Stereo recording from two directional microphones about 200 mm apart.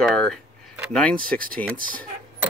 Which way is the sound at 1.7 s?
45° right (ahead or behind).